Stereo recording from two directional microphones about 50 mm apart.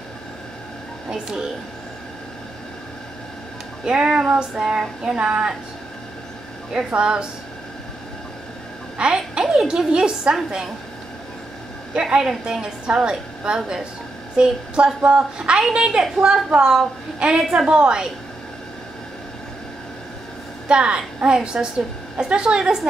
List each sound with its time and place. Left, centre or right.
3.8 s a sound: centre
6.9 s a woman's voice: centre
8.9 s a woman's voice: centre
11.9 s a woman's voice: centre
12.8 s a sound: right
13.4 s a woman's voice: centre
20.6 s a woman's voice: centre